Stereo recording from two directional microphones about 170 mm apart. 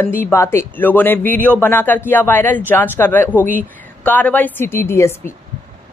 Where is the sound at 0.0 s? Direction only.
15° left (ahead or behind).